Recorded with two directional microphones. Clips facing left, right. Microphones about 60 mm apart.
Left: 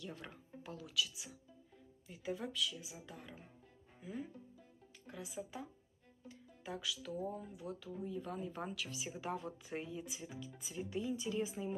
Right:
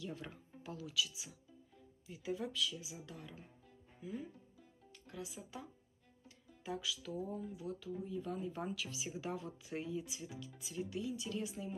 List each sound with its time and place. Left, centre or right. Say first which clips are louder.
0.0 s speech: right 2 dB; centre
5.2 s speech: left 3 dB; centre
6.2 s music: right 2 dB; centre
7.2 s speech: right 1 dB; centre
11.6 s speech: left 3 dB; left